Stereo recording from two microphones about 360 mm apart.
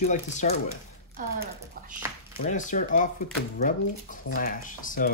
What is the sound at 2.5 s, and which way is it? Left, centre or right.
Speech, left.